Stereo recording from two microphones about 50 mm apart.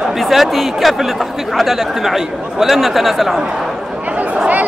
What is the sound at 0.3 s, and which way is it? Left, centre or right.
Speech, centre.